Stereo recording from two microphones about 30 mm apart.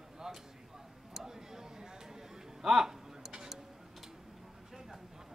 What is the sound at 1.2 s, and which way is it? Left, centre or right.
Tick-tock, centre.